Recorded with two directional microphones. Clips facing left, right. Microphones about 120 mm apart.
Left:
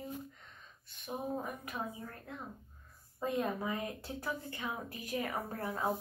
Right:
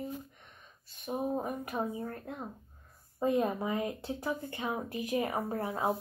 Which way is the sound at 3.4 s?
25° right (ahead or behind).